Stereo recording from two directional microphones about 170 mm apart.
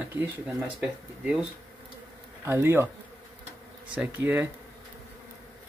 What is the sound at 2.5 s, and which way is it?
Speech, 15° right (ahead or behind).